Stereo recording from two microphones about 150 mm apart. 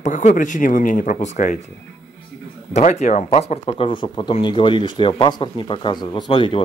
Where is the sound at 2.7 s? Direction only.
50° left (ahead or behind).